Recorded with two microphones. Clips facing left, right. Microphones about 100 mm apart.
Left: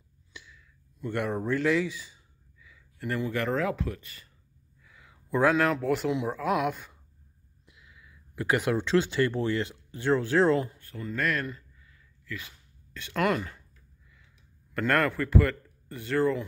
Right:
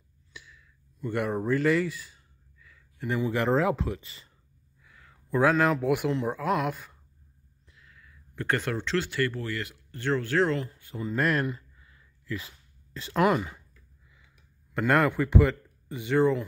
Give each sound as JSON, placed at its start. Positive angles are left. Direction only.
{"t": 0.3, "sound": "a sound", "side_deg": -5}
{"t": 3.3, "sound": "speech", "side_deg": -25}
{"t": 4.8, "sound": "a sound", "side_deg": 5}
{"t": 5.8, "sound": "speech", "side_deg": -10}
{"t": 6.4, "sound": "speech", "side_deg": 0}
{"t": 9.8, "sound": "speech", "side_deg": 15}
{"t": 10.9, "sound": "speech", "side_deg": -25}
{"t": 11.4, "sound": "a sound", "side_deg": -25}
{"t": 13.2, "sound": "speech", "side_deg": -15}
{"t": 14.8, "sound": "speech", "side_deg": -10}